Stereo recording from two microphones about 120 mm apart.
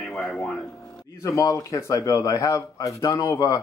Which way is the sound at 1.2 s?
25° left (ahead or behind).